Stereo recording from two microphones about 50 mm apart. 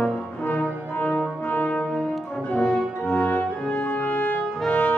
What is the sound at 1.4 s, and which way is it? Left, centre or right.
French horn, left.